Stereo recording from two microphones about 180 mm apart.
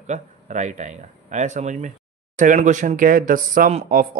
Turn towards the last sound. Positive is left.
turn(degrees=-45)  # may be behind; listen again after turning